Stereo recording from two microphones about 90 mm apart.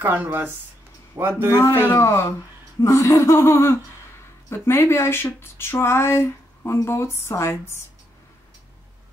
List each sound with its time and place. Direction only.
0.0 s speech: 20° right (ahead or behind)
1.1 s speech: 30° right (ahead or behind)
1.5 s speech: 30° left (ahead or behind)
2.0 s a sound: 35° left (ahead or behind)
4.5 s speech: 30° left (ahead or behind)